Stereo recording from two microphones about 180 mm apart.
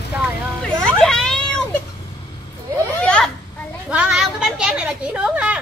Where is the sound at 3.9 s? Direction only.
5° right (ahead or behind).